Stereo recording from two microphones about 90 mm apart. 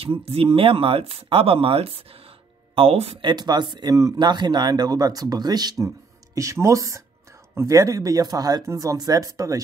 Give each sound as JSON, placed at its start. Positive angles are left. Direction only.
{"t": 0.0, "sound": "speech", "side_deg": -90}
{"t": 6.3, "sound": "speech", "side_deg": -35}